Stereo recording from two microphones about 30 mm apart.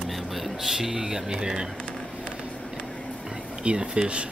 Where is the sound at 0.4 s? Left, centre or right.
Centre.